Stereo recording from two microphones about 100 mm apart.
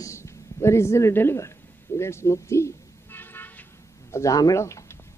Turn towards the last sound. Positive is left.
turn(degrees=30)  # may be behind; listen again after turning